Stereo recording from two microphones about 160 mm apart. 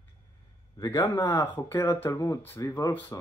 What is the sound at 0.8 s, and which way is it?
Speech, 25° left (ahead or behind).